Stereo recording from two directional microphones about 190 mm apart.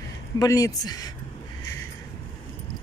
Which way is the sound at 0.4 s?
20° left (ahead or behind).